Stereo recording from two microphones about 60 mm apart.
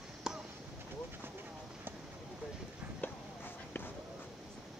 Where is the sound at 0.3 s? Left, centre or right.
Centre.